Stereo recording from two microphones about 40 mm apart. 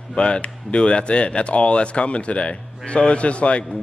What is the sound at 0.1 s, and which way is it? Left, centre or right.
Speech, left.